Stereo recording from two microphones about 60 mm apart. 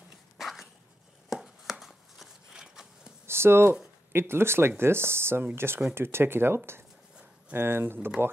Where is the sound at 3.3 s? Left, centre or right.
Right.